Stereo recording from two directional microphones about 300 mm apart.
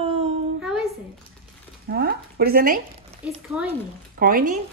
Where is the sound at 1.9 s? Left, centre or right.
Right.